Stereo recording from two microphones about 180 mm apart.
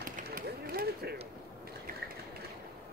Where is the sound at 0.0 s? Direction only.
55° right (ahead or behind).